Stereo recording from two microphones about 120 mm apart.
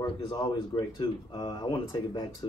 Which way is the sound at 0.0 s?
40° left (ahead or behind).